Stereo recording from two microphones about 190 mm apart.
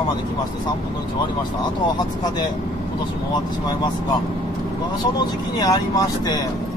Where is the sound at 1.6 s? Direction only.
20° left (ahead or behind).